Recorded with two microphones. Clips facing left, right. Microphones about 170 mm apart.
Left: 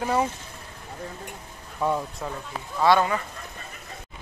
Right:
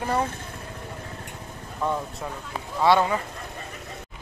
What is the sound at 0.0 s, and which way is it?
Speech, 5° left (ahead or behind).